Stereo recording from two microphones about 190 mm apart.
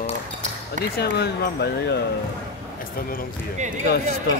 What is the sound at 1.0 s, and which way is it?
Speech, 60° left (ahead or behind).